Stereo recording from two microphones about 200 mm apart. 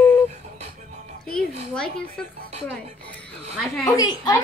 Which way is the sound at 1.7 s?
5° left (ahead or behind).